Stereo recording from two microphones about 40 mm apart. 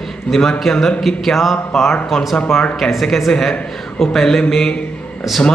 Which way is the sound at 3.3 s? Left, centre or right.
Centre.